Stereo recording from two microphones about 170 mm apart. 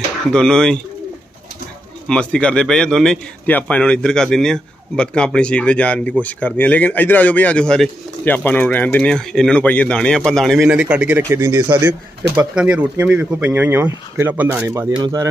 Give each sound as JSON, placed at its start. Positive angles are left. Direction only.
{"t": 0.3, "sound": "a man's voice", "side_deg": 5}
{"t": 2.0, "sound": "a man's voice", "side_deg": 5}
{"t": 12.4, "sound": "speech", "side_deg": -5}